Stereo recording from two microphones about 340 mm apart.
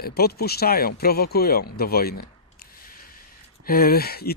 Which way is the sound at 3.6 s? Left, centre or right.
Left.